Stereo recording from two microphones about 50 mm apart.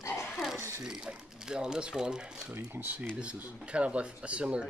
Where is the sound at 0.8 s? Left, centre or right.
Centre.